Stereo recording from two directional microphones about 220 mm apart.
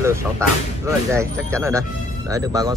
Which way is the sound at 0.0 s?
10° right (ahead or behind).